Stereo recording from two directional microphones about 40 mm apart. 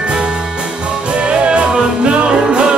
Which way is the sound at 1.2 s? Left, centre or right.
Right.